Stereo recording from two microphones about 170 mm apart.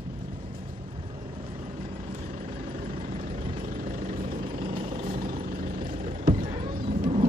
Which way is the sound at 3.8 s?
50° right (ahead or behind).